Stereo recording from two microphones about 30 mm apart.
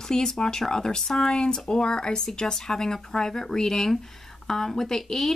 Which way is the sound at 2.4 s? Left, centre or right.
Centre.